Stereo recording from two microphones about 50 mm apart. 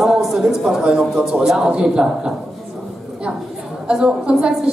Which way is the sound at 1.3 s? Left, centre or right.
Centre.